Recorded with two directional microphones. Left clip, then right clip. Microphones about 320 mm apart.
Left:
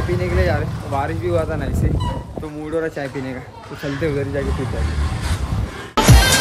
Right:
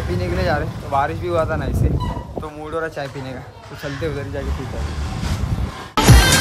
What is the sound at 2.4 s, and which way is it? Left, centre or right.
Speech, left.